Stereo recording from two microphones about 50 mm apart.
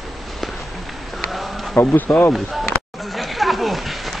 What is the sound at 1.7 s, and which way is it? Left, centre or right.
Speech, left.